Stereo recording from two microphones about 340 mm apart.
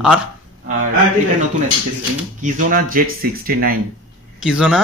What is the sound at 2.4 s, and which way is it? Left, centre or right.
Speech, right.